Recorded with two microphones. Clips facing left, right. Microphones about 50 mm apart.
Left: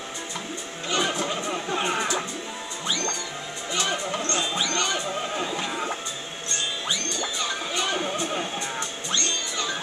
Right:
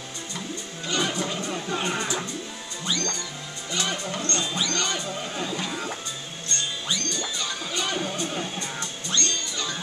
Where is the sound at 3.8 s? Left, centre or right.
Centre.